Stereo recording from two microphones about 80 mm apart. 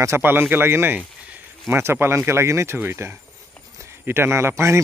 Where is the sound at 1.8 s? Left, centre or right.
Right.